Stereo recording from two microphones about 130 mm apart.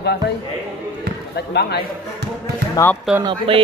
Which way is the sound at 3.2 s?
40° right (ahead or behind).